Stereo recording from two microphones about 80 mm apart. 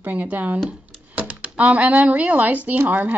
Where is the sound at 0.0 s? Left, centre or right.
Right.